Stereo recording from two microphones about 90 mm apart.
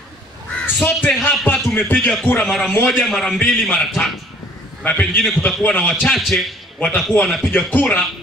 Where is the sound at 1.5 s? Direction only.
20° left (ahead or behind).